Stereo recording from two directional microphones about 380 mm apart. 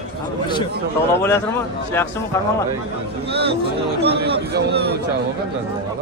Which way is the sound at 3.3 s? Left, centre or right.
Right.